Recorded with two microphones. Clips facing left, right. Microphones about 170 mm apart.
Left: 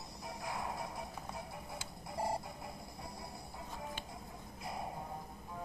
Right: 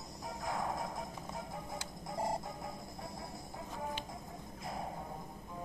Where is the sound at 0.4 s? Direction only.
45° right (ahead or behind).